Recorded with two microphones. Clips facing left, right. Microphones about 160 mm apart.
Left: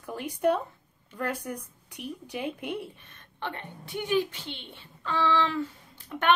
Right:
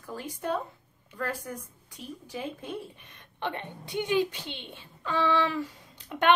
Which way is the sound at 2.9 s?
15° right (ahead or behind).